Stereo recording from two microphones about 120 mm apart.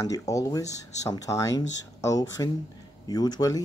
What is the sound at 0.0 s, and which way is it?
Speech, 30° left (ahead or behind).